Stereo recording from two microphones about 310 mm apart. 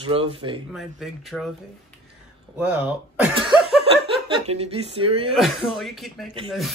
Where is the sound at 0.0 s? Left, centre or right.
Centre.